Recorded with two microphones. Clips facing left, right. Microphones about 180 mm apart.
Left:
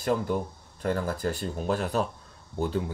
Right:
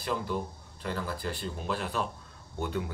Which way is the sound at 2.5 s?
30° left (ahead or behind).